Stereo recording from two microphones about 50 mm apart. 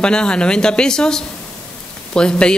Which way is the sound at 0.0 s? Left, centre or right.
Centre.